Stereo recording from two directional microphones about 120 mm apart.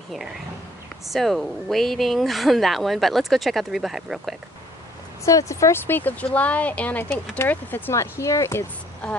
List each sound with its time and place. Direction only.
0.1 s speech: centre (ahead or behind)
5.2 s speech: 25° left (ahead or behind)